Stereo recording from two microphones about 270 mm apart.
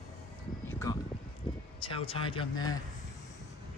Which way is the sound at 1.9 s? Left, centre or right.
Centre.